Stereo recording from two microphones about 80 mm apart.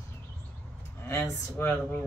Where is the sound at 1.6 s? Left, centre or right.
Left.